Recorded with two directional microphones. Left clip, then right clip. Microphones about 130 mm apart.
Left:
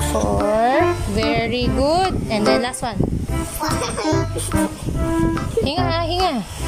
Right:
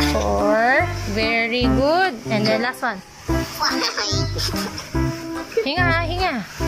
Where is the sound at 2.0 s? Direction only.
40° left (ahead or behind).